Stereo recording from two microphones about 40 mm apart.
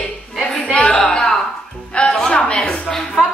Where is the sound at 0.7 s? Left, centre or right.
Left.